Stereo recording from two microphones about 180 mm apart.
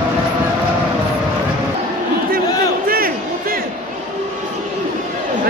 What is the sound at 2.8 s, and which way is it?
Crowd, 55° right (ahead or behind).